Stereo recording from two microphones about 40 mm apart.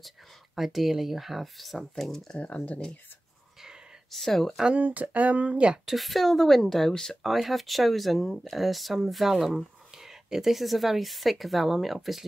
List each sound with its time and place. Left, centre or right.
0.6 s speech: centre
2.0 s speech: centre
2.3 s speech: left
4.1 s speech: centre
4.7 s a sound: right
5.9 s speech: centre
7.2 s speech: centre